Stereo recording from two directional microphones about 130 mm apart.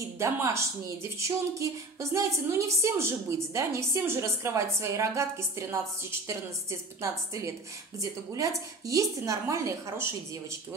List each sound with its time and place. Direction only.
0.2 s a woman's voice: 20° right (ahead or behind)
7.0 s a woman's voice: 25° right (ahead or behind)